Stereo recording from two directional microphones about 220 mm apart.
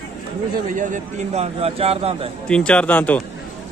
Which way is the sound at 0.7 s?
35° right (ahead or behind).